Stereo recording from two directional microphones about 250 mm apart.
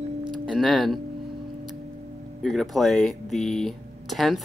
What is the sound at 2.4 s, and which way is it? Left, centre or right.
Speech, centre.